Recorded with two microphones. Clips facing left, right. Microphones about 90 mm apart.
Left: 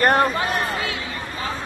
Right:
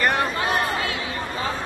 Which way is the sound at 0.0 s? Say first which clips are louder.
Left 5 dB; 45° left (ahead or behind).